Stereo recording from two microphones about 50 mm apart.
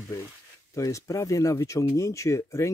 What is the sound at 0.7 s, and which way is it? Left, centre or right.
Speech, left.